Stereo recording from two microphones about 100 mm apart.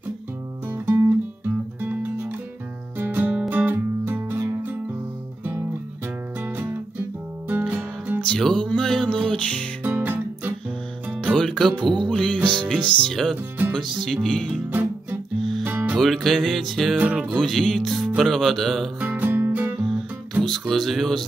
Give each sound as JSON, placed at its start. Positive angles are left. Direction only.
{"t": 0.7, "sound": "music", "side_deg": -25}
{"t": 3.0, "sound": "music", "side_deg": -15}
{"t": 8.2, "sound": "music", "side_deg": 5}
{"t": 9.8, "sound": "music", "side_deg": -15}
{"t": 11.3, "sound": "music", "side_deg": 5}
{"t": 13.1, "sound": "speech", "side_deg": 5}
{"t": 13.9, "sound": "music", "side_deg": 5}
{"t": 14.7, "sound": "music", "side_deg": -15}
{"t": 16.0, "sound": "speech", "side_deg": 0}
{"t": 17.0, "sound": "music", "side_deg": -15}
{"t": 17.4, "sound": "speech", "side_deg": 5}
{"t": 18.9, "sound": "music", "side_deg": -20}
{"t": 20.4, "sound": "music", "side_deg": 0}